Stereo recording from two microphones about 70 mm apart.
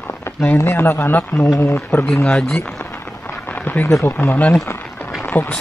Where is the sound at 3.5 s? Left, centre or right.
Left.